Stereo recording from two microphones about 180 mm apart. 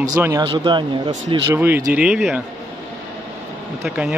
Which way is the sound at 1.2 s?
10° right (ahead or behind).